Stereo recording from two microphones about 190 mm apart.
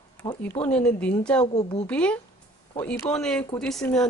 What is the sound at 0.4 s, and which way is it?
A woman's voice, 10° left (ahead or behind).